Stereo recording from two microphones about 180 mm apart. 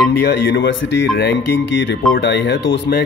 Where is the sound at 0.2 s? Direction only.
75° left (ahead or behind).